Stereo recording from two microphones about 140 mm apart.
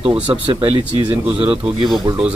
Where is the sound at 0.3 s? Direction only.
40° right (ahead or behind).